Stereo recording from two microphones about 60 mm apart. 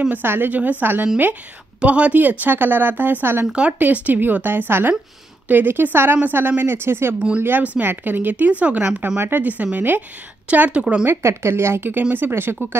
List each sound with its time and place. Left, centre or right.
0.2 s a woman's voice: right
7.2 s a woman's voice: centre
7.4 s a woman's voice: right; by 11.1 s centre
11.1 s speech: right